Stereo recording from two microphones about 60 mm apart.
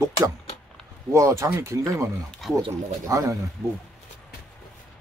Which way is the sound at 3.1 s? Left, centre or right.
Right.